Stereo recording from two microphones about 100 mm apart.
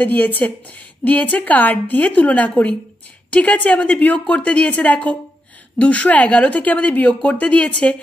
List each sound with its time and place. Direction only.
0.0 s a woman's voice: 15° left (ahead or behind)